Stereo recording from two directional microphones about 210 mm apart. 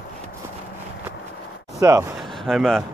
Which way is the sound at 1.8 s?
15° right (ahead or behind).